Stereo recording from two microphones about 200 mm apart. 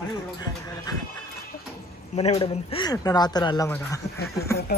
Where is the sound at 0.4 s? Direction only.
20° left (ahead or behind).